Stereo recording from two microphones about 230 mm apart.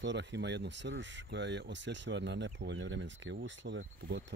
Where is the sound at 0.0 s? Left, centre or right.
Right.